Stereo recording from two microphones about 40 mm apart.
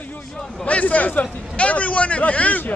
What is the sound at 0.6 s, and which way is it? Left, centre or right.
A man's voice, left.